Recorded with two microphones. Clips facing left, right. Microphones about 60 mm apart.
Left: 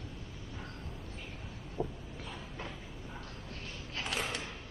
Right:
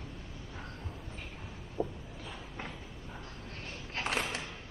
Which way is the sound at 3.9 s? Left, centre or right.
Right.